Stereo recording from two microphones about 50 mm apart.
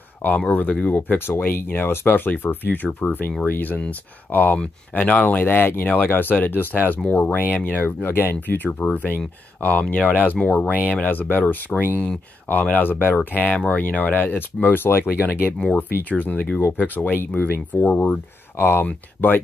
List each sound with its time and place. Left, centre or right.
0.5 s speech: left
1.1 s speech: left
7.8 s speech: left
8.6 s speech: left
15.7 s speech: left